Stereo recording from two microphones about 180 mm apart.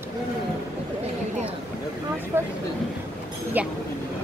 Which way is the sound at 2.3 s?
10° right (ahead or behind).